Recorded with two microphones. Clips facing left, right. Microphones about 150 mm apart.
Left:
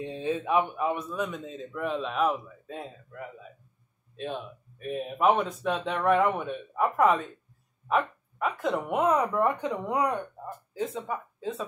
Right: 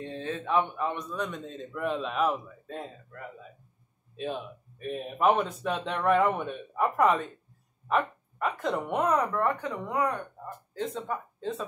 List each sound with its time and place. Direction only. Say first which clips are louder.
0.0 s a man's voice: left 4 dB; 15° left (ahead or behind)
9.3 s speech: left 2 dB; 20° left (ahead or behind)
10.7 s speech: left 1 dB; 5° left (ahead or behind)